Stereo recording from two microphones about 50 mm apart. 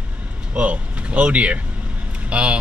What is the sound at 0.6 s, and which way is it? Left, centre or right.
Speech, right.